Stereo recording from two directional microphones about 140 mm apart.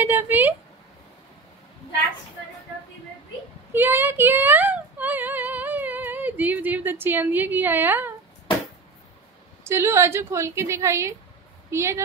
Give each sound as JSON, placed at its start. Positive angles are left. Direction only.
{"t": 0.0, "sound": "speech", "side_deg": -15}
{"t": 3.7, "sound": "speech", "side_deg": -15}
{"t": 9.7, "sound": "a woman's voice", "side_deg": -20}